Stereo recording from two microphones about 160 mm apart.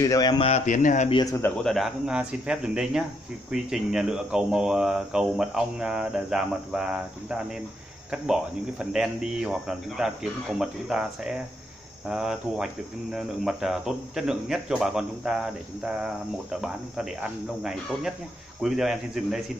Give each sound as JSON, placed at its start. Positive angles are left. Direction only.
{"t": 0.0, "sound": "speech", "side_deg": 25}
{"t": 0.5, "sound": "speech", "side_deg": 50}
{"t": 1.1, "sound": "speech", "side_deg": 20}
{"t": 1.6, "sound": "speech", "side_deg": 0}